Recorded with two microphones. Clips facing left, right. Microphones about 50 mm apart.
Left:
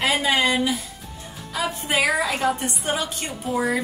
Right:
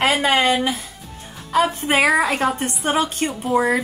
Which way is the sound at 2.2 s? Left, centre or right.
Right.